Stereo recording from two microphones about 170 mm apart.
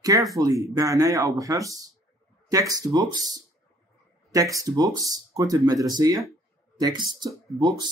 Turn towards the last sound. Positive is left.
turn(degrees=-20)  # may be behind; listen again after turning